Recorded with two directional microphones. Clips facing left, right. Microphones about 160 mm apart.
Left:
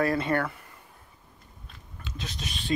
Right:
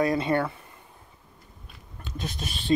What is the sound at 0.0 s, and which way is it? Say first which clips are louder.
Speech: right 2 dB; 20° right (ahead or behind).